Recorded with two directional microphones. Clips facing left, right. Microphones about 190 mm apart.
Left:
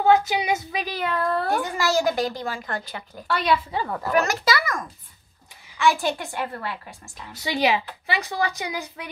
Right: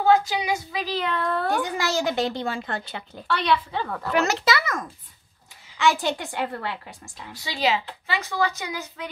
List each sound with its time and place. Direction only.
0.0 s speech: 20° left (ahead or behind)
1.0 s a woman's voice: 5° left (ahead or behind)
1.6 s a woman's voice: 20° right (ahead or behind)
3.2 s a woman's voice: 10° left (ahead or behind)
4.5 s a woman's voice: 25° right (ahead or behind)
7.3 s a woman's voice: 20° left (ahead or behind)